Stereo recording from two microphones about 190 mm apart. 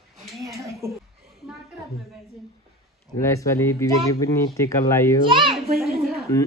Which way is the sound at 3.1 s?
15° left (ahead or behind).